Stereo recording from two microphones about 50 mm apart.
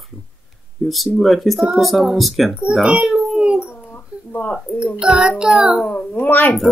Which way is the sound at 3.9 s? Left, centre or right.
Left.